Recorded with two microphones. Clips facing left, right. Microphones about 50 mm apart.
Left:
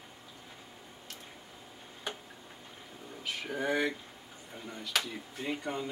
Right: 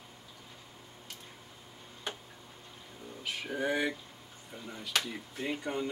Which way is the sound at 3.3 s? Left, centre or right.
Centre.